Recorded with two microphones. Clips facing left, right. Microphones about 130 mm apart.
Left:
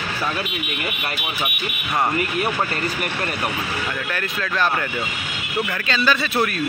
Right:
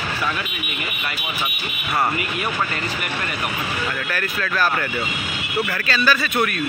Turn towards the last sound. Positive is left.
turn(degrees=25)  # may be behind; listen again after turning